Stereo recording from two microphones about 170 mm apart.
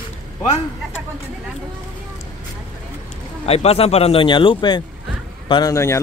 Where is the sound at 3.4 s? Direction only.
35° left (ahead or behind).